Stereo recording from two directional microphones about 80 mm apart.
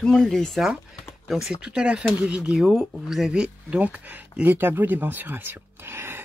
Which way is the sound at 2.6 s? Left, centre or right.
Centre.